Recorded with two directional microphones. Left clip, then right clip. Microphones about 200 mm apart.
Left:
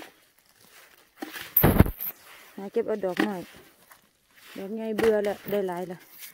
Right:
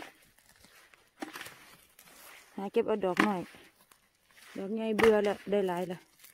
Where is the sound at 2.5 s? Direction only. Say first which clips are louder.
Left 2 dB; centre (ahead or behind).